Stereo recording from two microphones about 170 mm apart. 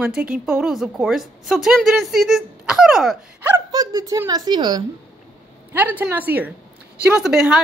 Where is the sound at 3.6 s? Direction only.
20° right (ahead or behind).